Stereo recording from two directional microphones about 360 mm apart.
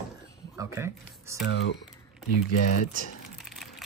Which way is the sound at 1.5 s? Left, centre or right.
Left.